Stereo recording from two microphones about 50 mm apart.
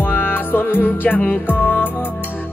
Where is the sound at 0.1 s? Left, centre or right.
Left.